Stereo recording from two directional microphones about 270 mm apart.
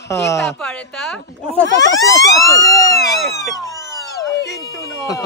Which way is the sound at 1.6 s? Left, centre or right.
Left.